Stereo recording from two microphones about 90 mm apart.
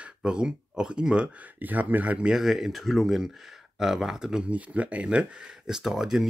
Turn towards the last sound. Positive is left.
turn(degrees=-5)  # may be behind; listen again after turning